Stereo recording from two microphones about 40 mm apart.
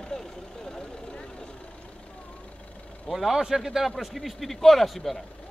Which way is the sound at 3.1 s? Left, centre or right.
Centre.